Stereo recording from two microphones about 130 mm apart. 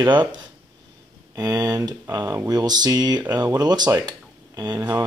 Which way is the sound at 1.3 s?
30° right (ahead or behind).